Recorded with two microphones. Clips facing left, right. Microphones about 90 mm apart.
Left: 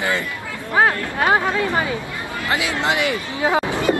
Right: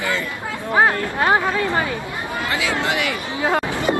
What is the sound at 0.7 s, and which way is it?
Speech, 15° right (ahead or behind).